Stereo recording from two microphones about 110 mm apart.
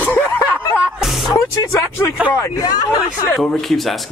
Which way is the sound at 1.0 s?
Centre (ahead or behind).